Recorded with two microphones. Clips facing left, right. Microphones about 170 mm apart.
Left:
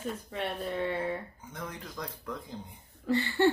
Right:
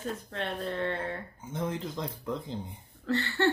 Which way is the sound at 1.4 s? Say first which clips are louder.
Right 8 dB; 25° right (ahead or behind).